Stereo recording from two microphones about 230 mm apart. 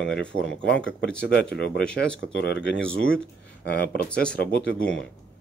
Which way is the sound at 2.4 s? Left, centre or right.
Left.